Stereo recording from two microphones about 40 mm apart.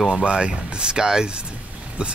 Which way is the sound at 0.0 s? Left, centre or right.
Right.